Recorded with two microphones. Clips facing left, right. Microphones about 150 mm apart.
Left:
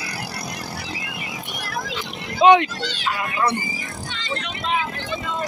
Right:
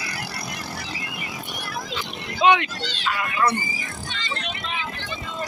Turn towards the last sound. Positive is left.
turn(degrees=20)  # may be behind; listen again after turning